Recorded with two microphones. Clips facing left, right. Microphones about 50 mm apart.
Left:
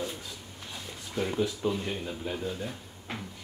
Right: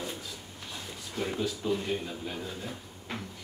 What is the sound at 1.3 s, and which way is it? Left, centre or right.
Speech, centre.